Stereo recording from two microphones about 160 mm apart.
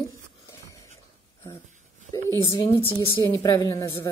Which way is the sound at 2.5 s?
30° left (ahead or behind).